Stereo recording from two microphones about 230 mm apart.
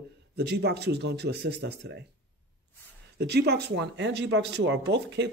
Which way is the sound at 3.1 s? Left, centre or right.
Right.